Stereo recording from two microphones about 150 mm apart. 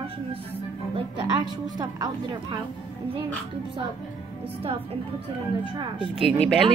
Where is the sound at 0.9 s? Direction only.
35° right (ahead or behind).